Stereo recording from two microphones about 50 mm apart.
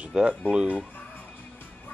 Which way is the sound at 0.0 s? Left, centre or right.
Right.